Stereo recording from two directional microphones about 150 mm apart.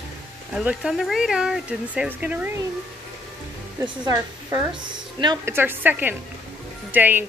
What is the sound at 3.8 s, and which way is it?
A woman's voice, 20° right (ahead or behind).